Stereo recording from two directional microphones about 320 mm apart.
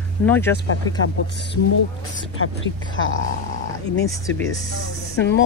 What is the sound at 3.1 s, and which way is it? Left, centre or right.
Speech, left.